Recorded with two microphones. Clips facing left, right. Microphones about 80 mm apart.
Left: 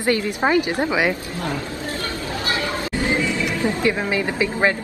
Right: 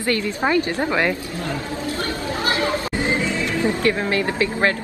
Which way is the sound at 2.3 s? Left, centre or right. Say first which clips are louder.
Right 3 dB; right.